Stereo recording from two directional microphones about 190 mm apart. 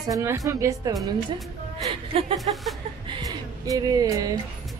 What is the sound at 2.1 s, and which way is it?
Speech, 30° right (ahead or behind).